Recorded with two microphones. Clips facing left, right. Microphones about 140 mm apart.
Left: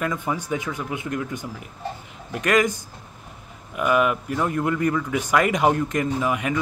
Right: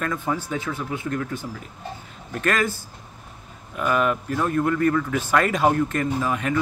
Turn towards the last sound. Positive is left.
turn(degrees=10)  # may be behind; listen again after turning